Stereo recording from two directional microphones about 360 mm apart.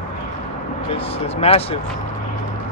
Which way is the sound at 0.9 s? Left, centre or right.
Centre.